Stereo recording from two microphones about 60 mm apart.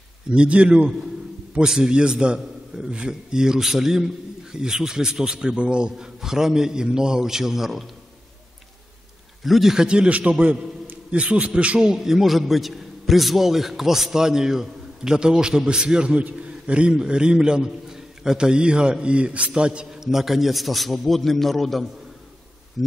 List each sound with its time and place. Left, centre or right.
0.3 s a man's voice: centre
9.4 s a man's voice: centre
11.9 s a man's voice: centre